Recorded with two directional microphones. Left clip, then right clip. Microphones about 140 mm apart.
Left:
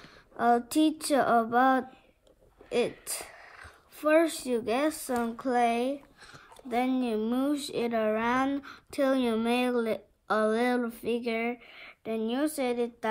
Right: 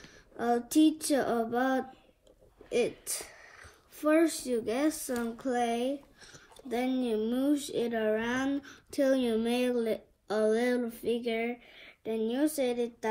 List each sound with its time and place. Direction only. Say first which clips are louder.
0.4 s a woman's voice: left 2 dB; 45° left (ahead or behind)
2.7 s a sound: left 1 dB; 45° left (ahead or behind)
3.6 s a sound: left 1 dB; 90° left
4.5 s a woman's voice: left 2 dB; 50° left (ahead or behind)
5.5 s a woman's voice: left 4 dB; 90° left; by 12.1 s 55° left (ahead or behind)
12.1 s a woman's voice: even; 90° left
12.5 s a woman's voice: left 1 dB; 45° left (ahead or behind)